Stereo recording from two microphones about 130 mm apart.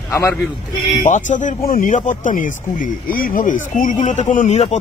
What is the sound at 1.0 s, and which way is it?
Speech, 75° left (ahead or behind).